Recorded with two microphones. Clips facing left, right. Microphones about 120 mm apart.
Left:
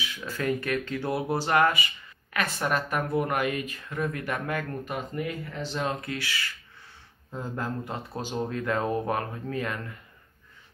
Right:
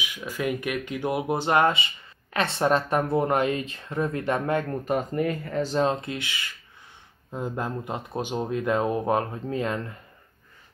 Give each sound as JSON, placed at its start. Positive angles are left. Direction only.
{"t": 0.0, "sound": "speech", "side_deg": -15}
{"t": 4.9, "sound": "speech", "side_deg": -40}
{"t": 5.9, "sound": "speech", "side_deg": -25}